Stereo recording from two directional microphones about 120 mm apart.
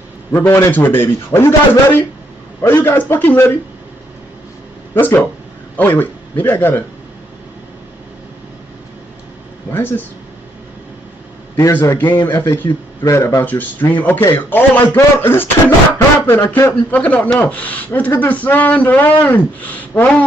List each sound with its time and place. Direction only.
0.3 s a man's voice: 20° left (ahead or behind)
4.9 s a man's voice: 15° left (ahead or behind)
9.7 s speech: 15° left (ahead or behind)
11.5 s a man's voice: 25° left (ahead or behind)